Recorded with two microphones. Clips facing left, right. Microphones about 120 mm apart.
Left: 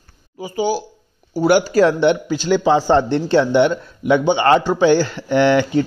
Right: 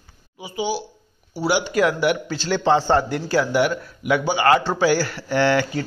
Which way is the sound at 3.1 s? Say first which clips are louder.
Left 6 dB; 25° left (ahead or behind).